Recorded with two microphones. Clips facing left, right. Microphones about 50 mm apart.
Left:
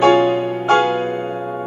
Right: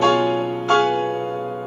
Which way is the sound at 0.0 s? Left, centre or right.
Left.